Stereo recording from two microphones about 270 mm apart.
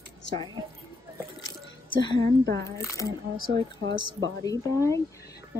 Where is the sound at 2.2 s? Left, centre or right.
Right.